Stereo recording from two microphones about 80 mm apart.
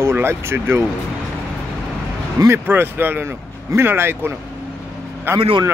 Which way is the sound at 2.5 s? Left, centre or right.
Right.